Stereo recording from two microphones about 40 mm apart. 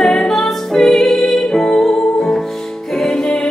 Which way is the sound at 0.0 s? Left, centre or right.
Centre.